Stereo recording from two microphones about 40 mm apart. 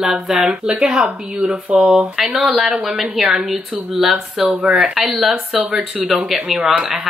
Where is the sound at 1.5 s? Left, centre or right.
Right.